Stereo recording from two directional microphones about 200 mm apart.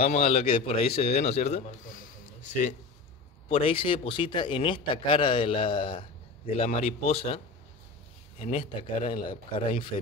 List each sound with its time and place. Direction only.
0.0 s a man's voice: 30° left (ahead or behind)
3.4 s a man's voice: 30° left (ahead or behind)